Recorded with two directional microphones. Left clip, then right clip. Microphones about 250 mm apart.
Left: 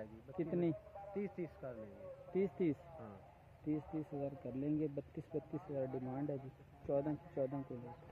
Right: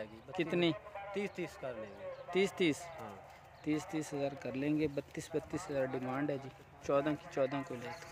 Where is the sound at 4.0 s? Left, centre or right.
Centre.